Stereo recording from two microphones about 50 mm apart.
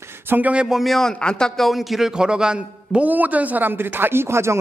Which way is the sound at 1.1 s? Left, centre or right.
Centre.